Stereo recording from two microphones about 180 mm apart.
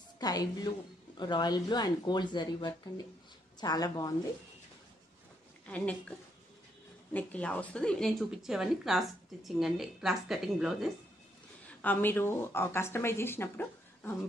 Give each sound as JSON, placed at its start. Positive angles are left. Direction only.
{"t": 0.2, "sound": "a woman's voice", "side_deg": 20}
{"t": 5.7, "sound": "a woman's voice", "side_deg": 5}
{"t": 11.8, "sound": "speech", "side_deg": 10}